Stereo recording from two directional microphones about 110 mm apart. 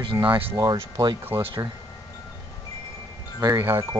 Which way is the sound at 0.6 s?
35° right (ahead or behind).